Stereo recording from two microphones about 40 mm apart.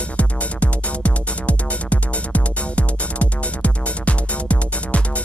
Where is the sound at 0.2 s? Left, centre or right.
Left.